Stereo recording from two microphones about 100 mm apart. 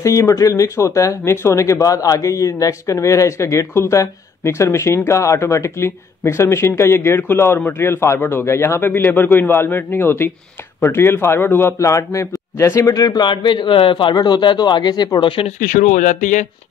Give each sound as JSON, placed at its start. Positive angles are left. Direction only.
{"t": 0.0, "sound": "speech", "side_deg": 30}
{"t": 14.1, "sound": "speech", "side_deg": 45}
{"t": 15.1, "sound": "speech", "side_deg": 60}